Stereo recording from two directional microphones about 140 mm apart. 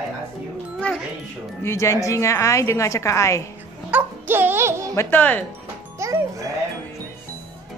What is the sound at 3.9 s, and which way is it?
Music, 15° right (ahead or behind).